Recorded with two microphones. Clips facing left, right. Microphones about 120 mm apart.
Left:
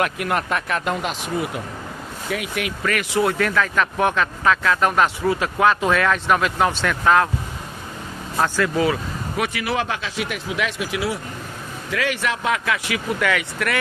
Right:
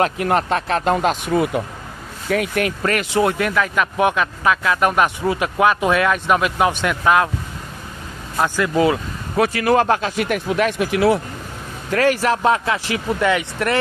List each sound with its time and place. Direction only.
0.0 s speech: 30° right (ahead or behind)
1.3 s speech: 55° right (ahead or behind)
3.1 s speech: 25° right (ahead or behind)
9.4 s speech: 40° right (ahead or behind); by 11.1 s 55° right (ahead or behind)
11.9 s speech: 40° right (ahead or behind); by 13.7 s 25° right (ahead or behind)